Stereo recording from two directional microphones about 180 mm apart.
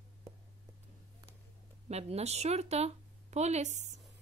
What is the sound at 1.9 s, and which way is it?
Speech, 35° right (ahead or behind).